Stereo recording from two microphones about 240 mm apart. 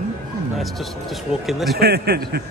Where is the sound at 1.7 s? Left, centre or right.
Right.